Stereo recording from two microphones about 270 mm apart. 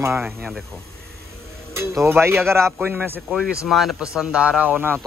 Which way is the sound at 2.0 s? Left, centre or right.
Centre.